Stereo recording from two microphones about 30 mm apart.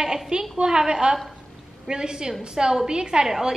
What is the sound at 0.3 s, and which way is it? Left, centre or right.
A woman's voice, right.